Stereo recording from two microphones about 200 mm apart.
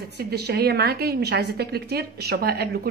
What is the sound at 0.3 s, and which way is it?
A woman's voice, 55° right (ahead or behind).